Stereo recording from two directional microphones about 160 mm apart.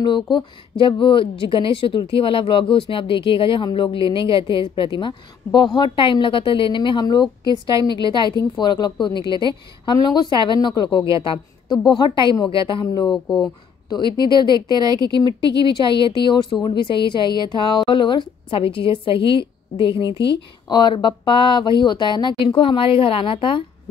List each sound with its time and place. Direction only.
0.0 s a woman's voice: 30° left (ahead or behind)
14.9 s speech: 25° right (ahead or behind)
15.1 s a woman's voice: 30° left (ahead or behind)